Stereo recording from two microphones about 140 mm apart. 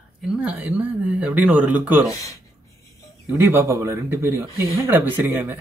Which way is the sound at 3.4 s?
15° right (ahead or behind).